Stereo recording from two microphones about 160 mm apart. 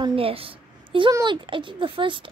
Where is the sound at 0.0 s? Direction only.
35° right (ahead or behind).